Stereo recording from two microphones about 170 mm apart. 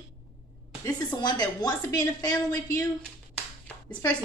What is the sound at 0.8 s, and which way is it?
Speech, 25° left (ahead or behind).